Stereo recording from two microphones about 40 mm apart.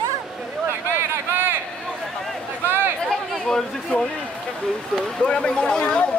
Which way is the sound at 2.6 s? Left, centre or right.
Right.